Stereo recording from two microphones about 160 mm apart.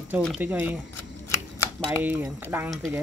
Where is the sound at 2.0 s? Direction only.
10° right (ahead or behind).